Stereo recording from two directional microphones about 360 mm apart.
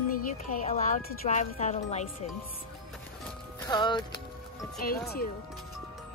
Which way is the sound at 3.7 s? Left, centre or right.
Centre.